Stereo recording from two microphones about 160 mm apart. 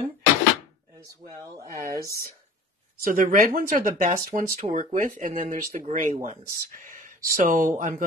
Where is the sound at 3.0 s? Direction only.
60° right (ahead or behind).